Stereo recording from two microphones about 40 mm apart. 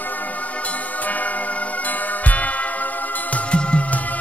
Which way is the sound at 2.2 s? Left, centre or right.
Left.